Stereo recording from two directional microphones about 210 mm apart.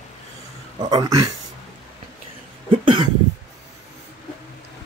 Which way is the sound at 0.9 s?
20° right (ahead or behind).